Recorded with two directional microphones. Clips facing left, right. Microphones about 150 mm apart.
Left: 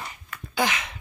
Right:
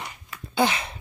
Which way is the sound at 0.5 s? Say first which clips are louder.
Right 3 dB; 30° right (ahead or behind).